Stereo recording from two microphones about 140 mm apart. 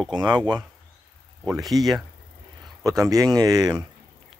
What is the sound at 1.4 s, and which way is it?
Speech, centre (ahead or behind).